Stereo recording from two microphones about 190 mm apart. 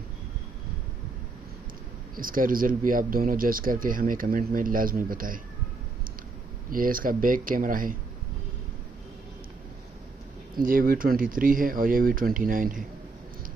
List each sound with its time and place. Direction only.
2.1 s speech: 45° right (ahead or behind)
6.7 s speech: 50° right (ahead or behind)
10.5 s speech: 50° right (ahead or behind)